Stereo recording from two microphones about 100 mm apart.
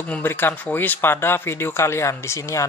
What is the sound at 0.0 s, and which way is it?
A man's voice, 20° left (ahead or behind).